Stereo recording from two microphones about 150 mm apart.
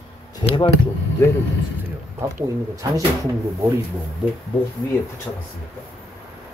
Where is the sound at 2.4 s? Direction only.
20° right (ahead or behind).